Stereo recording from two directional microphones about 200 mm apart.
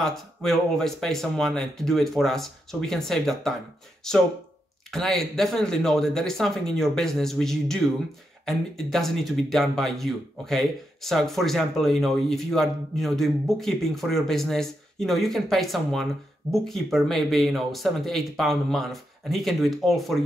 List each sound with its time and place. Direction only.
0.0 s speech: centre (ahead or behind)